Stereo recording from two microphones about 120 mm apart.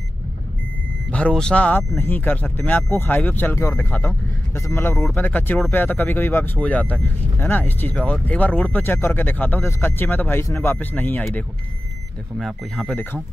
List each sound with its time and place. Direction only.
1.1 s speech: 10° left (ahead or behind)
12.4 s speech: centre (ahead or behind)